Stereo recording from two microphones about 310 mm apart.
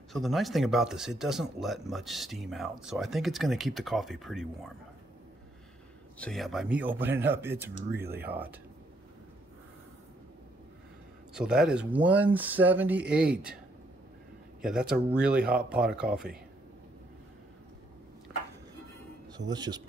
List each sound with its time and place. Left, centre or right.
0.1 s speech: centre
6.1 s speech: centre
11.3 s speech: centre
14.6 s speech: centre
19.5 s speech: centre